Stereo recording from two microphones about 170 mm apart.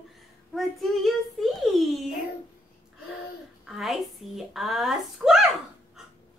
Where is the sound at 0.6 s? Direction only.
Centre (ahead or behind).